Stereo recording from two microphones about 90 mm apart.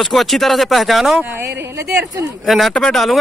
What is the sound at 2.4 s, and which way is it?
Speech, centre (ahead or behind).